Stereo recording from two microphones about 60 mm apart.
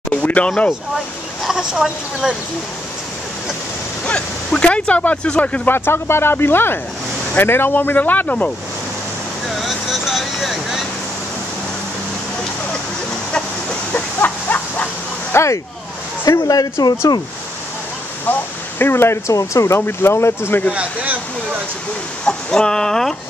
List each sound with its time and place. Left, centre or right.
0.1 s a sound: left
1.4 s speech: centre
4.0 s a sound: centre
5.7 s speech: left
9.6 s vehicle: centre
13.3 s a sound: centre
14.2 s a sound: left
15.3 s speech: left
16.3 s speech: left
18.2 s speech: left
19.3 s speech: left
19.8 s speech: left
20.7 s speech: right
22.2 s speech: centre